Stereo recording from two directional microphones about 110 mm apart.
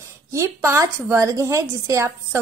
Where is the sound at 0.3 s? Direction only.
25° right (ahead or behind).